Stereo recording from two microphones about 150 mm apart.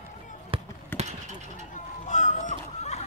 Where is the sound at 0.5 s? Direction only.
40° right (ahead or behind).